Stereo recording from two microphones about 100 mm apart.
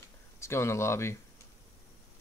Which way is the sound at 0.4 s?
25° left (ahead or behind).